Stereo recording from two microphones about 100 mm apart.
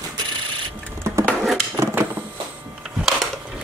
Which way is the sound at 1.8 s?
30° right (ahead or behind).